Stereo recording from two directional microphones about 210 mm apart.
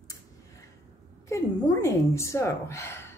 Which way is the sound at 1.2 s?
15° left (ahead or behind).